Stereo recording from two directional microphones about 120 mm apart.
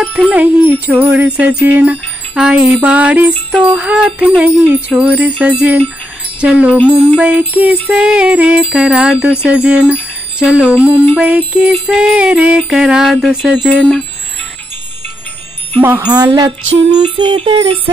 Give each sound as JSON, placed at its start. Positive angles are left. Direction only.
{"t": 0.3, "sound": "music", "side_deg": -15}
{"t": 15.8, "sound": "music", "side_deg": -15}
{"t": 16.1, "sound": "music", "side_deg": -30}
{"t": 17.2, "sound": "music", "side_deg": -45}